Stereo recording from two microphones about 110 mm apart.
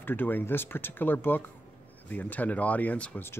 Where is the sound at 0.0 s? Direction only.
20° left (ahead or behind).